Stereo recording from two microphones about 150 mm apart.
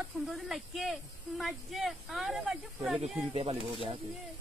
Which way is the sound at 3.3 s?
40° right (ahead or behind).